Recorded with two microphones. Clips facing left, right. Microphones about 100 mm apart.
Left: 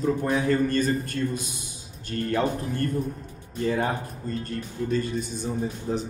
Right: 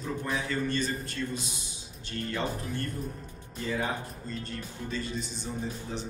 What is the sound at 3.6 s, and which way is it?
A man's voice, 55° left (ahead or behind).